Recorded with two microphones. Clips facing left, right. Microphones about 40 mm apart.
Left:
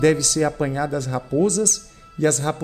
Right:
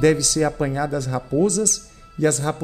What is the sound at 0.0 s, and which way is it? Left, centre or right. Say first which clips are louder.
Speech: even; left.